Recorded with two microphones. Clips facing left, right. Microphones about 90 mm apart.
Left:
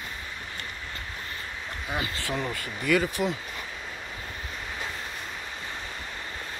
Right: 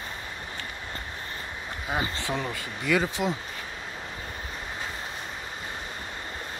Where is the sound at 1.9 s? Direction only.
25° right (ahead or behind).